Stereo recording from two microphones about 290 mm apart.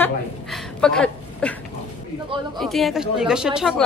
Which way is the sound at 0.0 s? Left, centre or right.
Centre.